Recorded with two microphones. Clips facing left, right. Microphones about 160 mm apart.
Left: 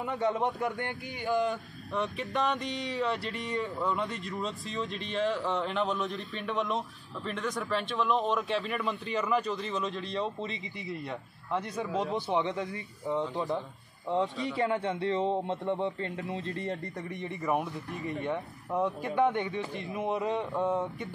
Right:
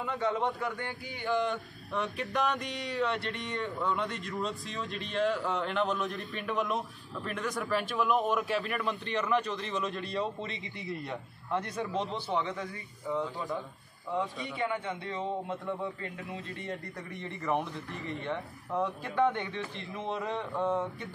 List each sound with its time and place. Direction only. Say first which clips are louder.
0.0 s speech: left 2 dB; 20° left (ahead or behind)
1.5 s speech: left 1 dB; centre (ahead or behind)
12.3 s speech: left 3 dB; 20° left (ahead or behind)
14.0 s a man's voice: left 4 dB; 25° left (ahead or behind)
17.1 s speech: left 1 dB; 15° left (ahead or behind)